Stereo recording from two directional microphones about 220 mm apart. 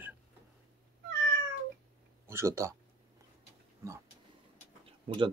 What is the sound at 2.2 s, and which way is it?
Speech, 10° right (ahead or behind).